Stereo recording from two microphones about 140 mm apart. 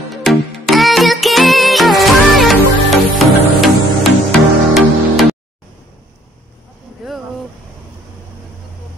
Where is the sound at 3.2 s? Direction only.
Centre (ahead or behind).